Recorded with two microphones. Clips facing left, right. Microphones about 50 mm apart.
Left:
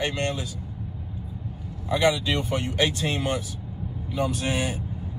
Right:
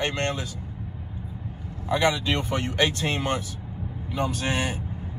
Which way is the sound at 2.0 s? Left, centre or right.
Right.